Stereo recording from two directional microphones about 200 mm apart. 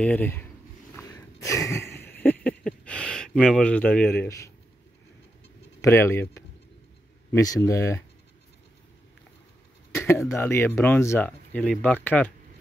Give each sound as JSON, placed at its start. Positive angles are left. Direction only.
{"t": 0.0, "sound": "speech", "side_deg": 10}
{"t": 0.9, "sound": "a sound", "side_deg": 15}
{"t": 5.8, "sound": "speech", "side_deg": 15}
{"t": 9.9, "sound": "speech", "side_deg": 15}